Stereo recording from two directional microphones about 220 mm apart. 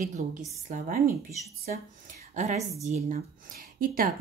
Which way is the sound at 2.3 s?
35° right (ahead or behind).